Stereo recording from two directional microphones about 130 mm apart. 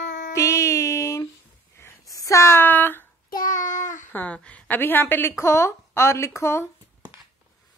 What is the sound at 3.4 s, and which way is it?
Child singing, 80° left.